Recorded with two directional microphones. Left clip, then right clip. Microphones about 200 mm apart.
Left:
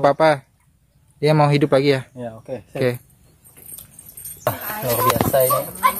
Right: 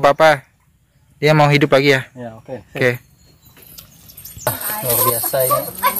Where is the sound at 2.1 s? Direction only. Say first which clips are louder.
Even; 10° left (ahead or behind).